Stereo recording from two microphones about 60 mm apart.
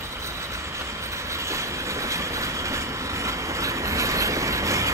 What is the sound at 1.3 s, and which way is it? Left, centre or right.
Train, right.